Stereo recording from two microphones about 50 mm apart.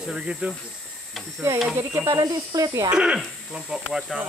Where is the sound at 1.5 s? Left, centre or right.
Right.